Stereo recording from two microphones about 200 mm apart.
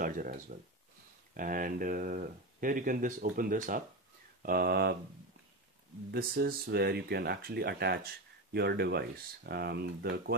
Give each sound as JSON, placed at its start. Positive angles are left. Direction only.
{"t": 0.0, "sound": "speech", "side_deg": -45}
{"t": 6.1, "sound": "speech", "side_deg": -50}